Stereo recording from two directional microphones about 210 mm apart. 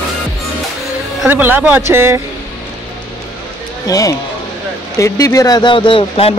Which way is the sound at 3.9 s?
15° left (ahead or behind).